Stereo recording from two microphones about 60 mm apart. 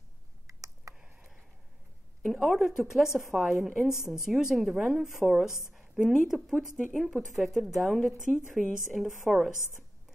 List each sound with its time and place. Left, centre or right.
0.5 s a sound: right
0.9 s tick: centre
2.2 s a woman's voice: centre